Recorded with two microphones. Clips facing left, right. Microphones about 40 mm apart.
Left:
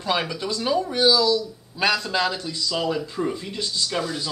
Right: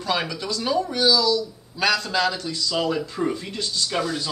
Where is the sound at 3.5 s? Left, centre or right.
Centre.